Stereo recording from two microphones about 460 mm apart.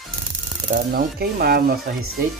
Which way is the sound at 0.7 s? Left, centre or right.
Centre.